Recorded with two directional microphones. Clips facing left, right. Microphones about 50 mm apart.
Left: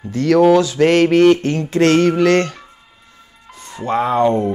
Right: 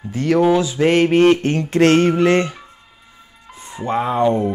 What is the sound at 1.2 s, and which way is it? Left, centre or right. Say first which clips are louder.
Mantra: left 2 dB; right.